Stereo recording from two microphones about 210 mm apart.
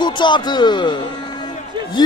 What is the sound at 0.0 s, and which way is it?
Speech, 20° left (ahead or behind).